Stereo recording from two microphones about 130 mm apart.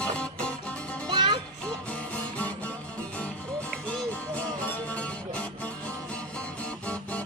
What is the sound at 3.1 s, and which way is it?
Music, 10° left (ahead or behind).